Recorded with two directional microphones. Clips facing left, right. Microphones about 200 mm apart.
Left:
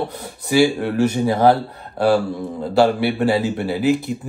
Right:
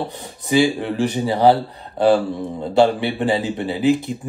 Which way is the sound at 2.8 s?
10° left (ahead or behind).